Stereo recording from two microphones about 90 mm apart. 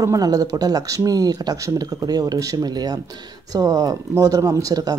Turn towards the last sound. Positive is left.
turn(degrees=-40)  # may be behind; listen again after turning